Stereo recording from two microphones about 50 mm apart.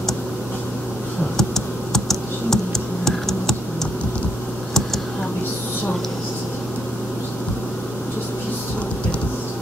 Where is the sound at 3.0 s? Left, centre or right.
Centre.